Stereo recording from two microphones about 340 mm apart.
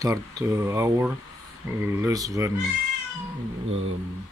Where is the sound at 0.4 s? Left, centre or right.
Centre.